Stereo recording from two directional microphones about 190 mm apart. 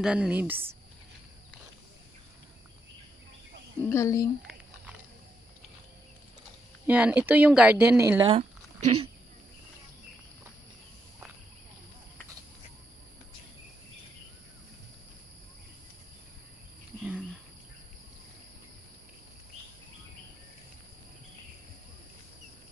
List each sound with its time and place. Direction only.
0.0 s speech: 5° right (ahead or behind)
3.8 s speech: 15° left (ahead or behind)
6.9 s speech: 5° right (ahead or behind)
8.3 s a sound: 35° right (ahead or behind)